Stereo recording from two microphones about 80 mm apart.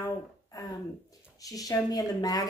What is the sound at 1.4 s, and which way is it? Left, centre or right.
A woman's voice, left.